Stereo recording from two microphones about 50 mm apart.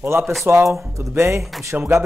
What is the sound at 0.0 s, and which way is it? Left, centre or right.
Speech, right.